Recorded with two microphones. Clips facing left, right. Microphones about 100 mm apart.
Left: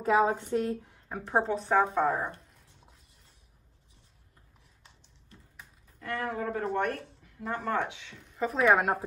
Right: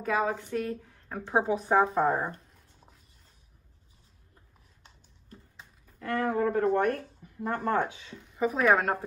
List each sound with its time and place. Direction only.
0.0 s speech: 25° left (ahead or behind)
0.9 s speech: 5° left (ahead or behind)
5.9 s speech: 40° right (ahead or behind)
8.2 s a woman's voice: centre (ahead or behind)